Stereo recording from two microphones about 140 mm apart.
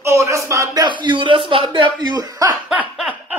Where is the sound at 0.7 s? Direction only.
35° right (ahead or behind).